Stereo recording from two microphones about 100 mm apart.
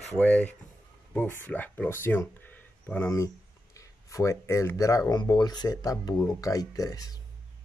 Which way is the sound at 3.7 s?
30° left (ahead or behind).